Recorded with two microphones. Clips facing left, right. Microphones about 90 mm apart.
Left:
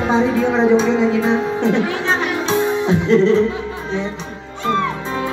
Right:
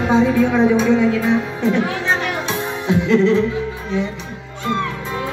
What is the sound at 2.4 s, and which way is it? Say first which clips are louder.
Music: left 5 dB; 25° left (ahead or behind).